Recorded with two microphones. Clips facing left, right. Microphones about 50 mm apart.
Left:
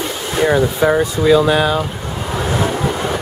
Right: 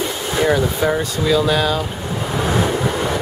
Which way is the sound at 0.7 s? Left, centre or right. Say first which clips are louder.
Left 4 dB; centre.